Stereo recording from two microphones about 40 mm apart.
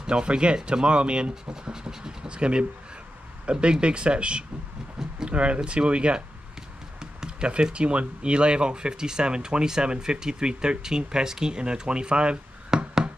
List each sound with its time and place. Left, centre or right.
0.0 s speech: right